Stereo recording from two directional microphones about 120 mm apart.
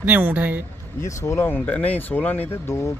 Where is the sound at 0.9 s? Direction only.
25° left (ahead or behind).